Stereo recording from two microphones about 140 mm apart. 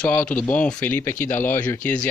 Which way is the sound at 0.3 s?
10° left (ahead or behind).